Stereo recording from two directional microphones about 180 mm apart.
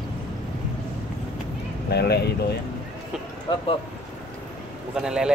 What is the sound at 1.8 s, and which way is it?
Speech, 65° left (ahead or behind).